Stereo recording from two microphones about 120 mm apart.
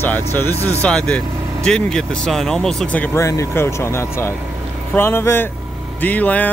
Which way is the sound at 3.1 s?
25° left (ahead or behind).